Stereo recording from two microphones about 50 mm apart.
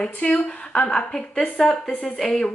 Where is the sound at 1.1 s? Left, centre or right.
Centre.